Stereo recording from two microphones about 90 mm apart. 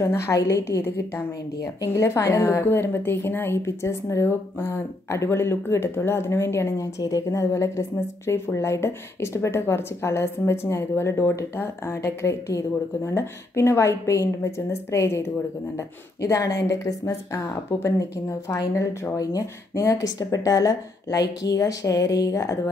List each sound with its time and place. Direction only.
0.0 s a woman's voice: 35° left (ahead or behind)
7.0 s a woman's voice: 45° left (ahead or behind)